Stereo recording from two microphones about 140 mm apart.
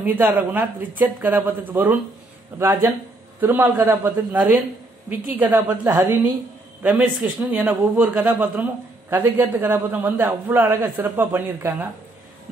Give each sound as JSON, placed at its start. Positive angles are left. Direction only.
{"t": 0.0, "sound": "a man's voice", "side_deg": -15}